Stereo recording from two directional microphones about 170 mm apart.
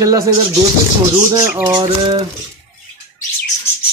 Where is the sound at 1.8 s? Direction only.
35° right (ahead or behind).